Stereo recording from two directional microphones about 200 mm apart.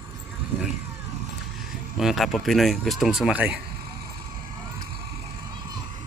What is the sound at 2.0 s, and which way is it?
Speech, centre (ahead or behind).